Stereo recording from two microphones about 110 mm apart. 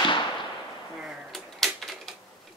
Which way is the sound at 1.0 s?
Centre (ahead or behind).